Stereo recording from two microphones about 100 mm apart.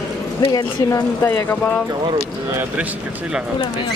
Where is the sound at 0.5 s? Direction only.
45° left (ahead or behind).